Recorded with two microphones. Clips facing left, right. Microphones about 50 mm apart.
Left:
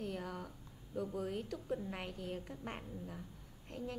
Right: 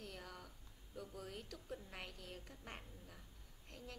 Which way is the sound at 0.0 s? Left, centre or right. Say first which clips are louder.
Left 10 dB; left.